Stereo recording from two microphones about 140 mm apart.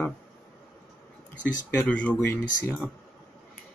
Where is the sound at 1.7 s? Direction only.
10° left (ahead or behind).